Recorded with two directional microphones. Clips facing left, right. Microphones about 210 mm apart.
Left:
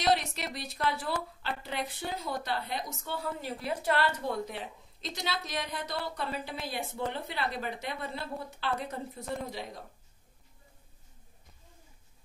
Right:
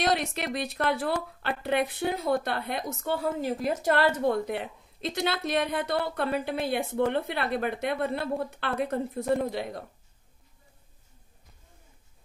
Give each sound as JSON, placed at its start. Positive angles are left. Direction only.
{"t": 0.0, "sound": "speech", "side_deg": -60}